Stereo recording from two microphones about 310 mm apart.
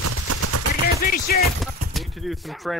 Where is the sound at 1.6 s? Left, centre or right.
Centre.